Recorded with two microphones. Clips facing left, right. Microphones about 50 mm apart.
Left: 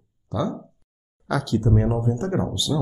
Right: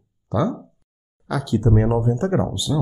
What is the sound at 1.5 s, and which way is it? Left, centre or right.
Speech, centre.